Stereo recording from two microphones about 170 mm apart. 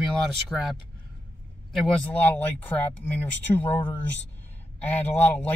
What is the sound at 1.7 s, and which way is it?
A man's voice, 10° left (ahead or behind).